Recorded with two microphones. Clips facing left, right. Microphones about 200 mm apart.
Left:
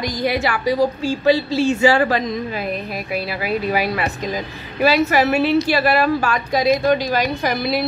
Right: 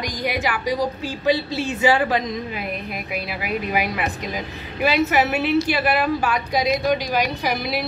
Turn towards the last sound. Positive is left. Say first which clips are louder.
# left 4 dB
turn(degrees=-10)  # may be behind; listen again after turning